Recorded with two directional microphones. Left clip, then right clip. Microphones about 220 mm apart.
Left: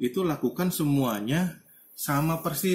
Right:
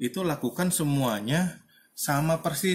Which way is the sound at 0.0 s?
45° right (ahead or behind).